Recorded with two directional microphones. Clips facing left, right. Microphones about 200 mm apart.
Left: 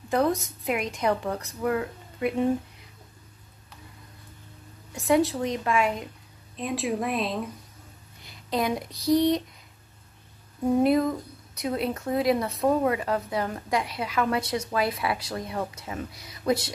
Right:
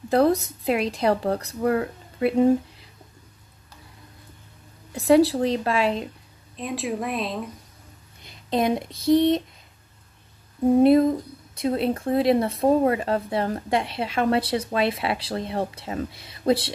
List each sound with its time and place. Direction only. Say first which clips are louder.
0.1 s a woman's voice: right 5 dB; 35° right (ahead or behind)
4.9 s a woman's voice: right 5 dB; 35° right (ahead or behind)
6.5 s speech: even; centre (ahead or behind)
8.2 s a sound: right 4 dB; 20° right (ahead or behind)
8.9 s speech: right 3 dB; centre (ahead or behind)
10.8 s speech: right 6 dB; 25° right (ahead or behind)